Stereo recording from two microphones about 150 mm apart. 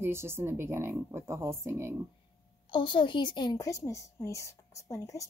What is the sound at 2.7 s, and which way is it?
A woman's voice, 35° left (ahead or behind).